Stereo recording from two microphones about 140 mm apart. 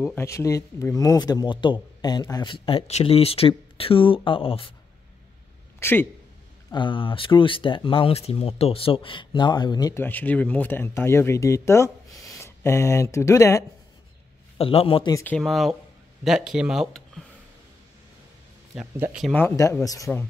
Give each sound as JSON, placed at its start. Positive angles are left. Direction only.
{"t": 0.0, "sound": "speech", "side_deg": 15}
{"t": 5.8, "sound": "speech", "side_deg": 15}
{"t": 6.7, "sound": "speech", "side_deg": 35}
{"t": 9.9, "sound": "speech", "side_deg": 15}
{"t": 14.6, "sound": "speech", "side_deg": 45}
{"t": 15.2, "sound": "speech", "side_deg": 5}
{"t": 19.3, "sound": "speech", "side_deg": 20}